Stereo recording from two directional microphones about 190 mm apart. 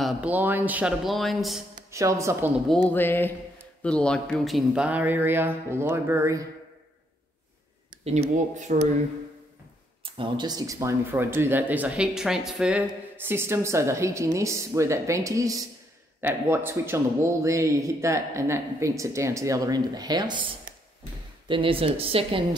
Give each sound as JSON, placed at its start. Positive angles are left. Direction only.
{"t": 0.0, "sound": "speech", "side_deg": -5}
{"t": 1.9, "sound": "speech", "side_deg": -15}
{"t": 2.9, "sound": "speech", "side_deg": 10}
{"t": 8.0, "sound": "speech", "side_deg": -35}
{"t": 10.0, "sound": "speech", "side_deg": -25}